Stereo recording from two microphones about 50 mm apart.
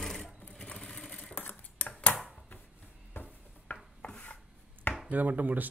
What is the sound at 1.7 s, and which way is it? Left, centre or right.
Cutlery, left.